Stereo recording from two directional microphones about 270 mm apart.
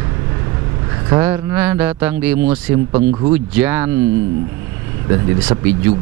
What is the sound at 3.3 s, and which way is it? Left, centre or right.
Speech, centre.